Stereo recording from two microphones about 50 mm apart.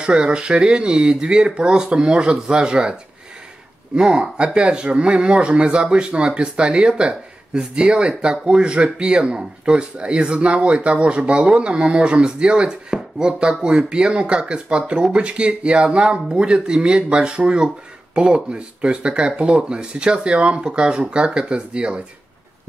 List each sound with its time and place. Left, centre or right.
0.0 s speech: centre